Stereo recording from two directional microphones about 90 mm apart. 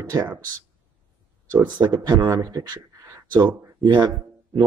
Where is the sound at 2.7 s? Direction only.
40° right (ahead or behind).